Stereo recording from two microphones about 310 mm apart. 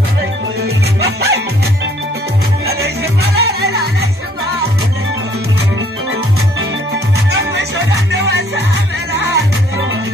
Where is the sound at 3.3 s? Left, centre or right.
Right.